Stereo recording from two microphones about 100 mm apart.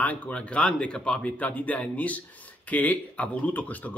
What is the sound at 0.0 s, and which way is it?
Speech, 15° left (ahead or behind).